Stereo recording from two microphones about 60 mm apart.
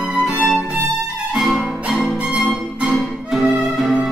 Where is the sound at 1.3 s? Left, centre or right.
Centre.